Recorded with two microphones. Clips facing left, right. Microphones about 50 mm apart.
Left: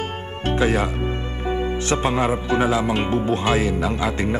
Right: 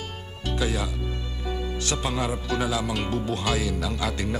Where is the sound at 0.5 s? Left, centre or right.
Left.